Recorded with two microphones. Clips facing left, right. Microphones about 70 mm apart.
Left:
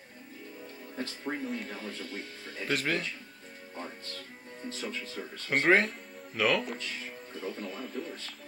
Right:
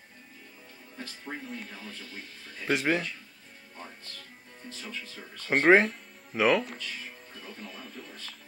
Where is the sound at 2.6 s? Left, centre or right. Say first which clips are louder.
Right 4 dB; centre.